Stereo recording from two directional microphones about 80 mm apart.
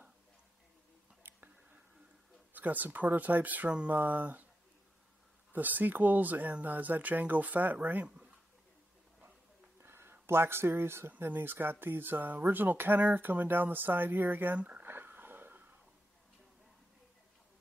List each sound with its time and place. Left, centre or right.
1.2 s whispering: right
2.5 s speech: right
5.5 s speech: right
9.8 s speech: right